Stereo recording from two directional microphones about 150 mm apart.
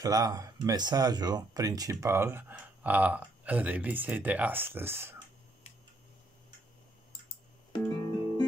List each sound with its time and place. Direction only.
0.0 s speech: 25° right (ahead or behind)
7.7 s music: 30° left (ahead or behind)